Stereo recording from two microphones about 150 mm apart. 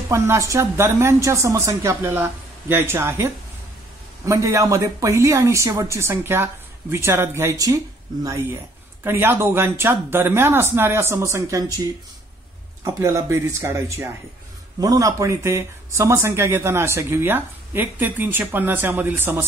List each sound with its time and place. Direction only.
0.1 s speech: 20° right (ahead or behind)
4.3 s speech: 20° right (ahead or behind)
12.8 s speech: 20° right (ahead or behind)